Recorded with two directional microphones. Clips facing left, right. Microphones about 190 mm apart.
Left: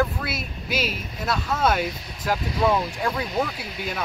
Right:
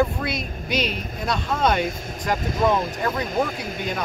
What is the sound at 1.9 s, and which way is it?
Speech, 45° right (ahead or behind).